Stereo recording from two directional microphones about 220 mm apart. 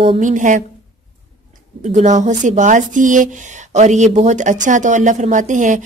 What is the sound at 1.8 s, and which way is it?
Speech, 35° right (ahead or behind).